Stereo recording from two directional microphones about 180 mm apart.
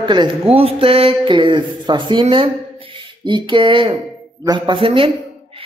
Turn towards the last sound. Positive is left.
turn(degrees=-30)  # may be behind; listen again after turning